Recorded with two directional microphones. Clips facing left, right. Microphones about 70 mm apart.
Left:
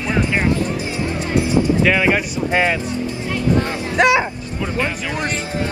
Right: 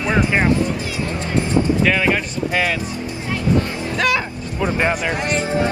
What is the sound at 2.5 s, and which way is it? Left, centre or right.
Speech, left.